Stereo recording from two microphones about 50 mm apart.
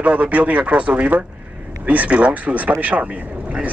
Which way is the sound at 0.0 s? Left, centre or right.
Right.